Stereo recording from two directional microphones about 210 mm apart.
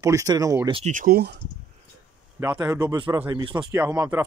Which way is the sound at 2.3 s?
10° right (ahead or behind).